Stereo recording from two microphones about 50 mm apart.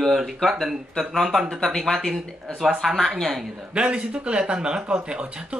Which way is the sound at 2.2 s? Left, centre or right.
Centre.